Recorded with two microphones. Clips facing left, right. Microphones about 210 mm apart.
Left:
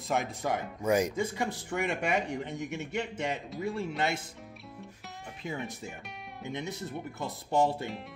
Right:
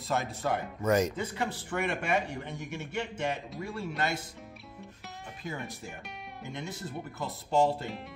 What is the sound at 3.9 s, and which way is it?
Speech, 25° left (ahead or behind).